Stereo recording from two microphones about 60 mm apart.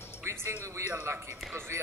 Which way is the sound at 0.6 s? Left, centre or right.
Right.